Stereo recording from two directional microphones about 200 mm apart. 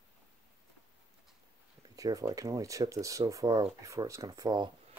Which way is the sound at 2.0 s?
15° right (ahead or behind).